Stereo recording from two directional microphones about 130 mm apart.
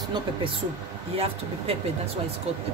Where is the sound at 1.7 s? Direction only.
50° right (ahead or behind).